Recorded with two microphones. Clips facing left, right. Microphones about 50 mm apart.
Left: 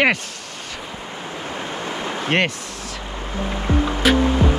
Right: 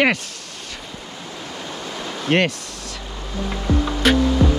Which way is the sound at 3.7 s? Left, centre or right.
Left.